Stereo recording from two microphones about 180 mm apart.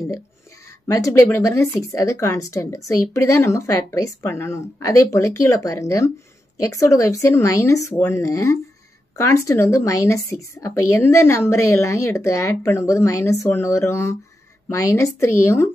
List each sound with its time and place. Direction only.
0.8 s a woman's voice: 15° left (ahead or behind)